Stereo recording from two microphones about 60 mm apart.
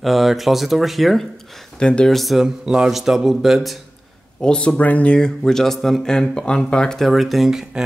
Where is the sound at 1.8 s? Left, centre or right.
Centre.